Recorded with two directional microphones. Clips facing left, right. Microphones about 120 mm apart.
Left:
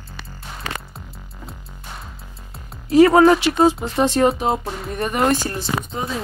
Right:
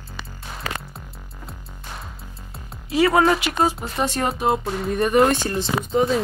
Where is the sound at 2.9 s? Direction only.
40° left (ahead or behind).